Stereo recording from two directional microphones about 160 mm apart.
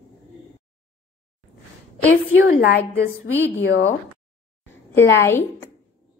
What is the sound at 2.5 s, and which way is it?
Speech, 70° left (ahead or behind).